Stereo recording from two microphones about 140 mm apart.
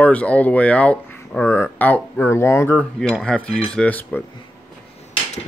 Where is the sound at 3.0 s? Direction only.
5° left (ahead or behind).